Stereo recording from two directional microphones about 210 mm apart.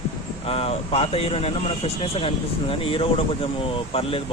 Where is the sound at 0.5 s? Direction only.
30° left (ahead or behind).